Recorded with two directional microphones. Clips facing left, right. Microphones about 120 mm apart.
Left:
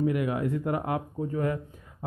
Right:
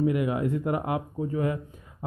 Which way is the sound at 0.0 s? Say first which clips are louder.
Right 2 dB; 20° right (ahead or behind).